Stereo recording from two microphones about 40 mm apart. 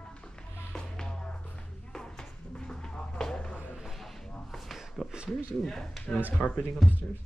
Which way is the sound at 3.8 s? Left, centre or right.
Centre.